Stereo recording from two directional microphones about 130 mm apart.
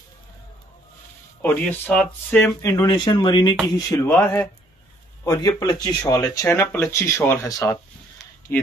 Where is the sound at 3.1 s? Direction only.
35° left (ahead or behind).